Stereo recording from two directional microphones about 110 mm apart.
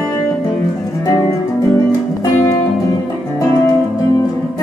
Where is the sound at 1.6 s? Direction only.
30° left (ahead or behind).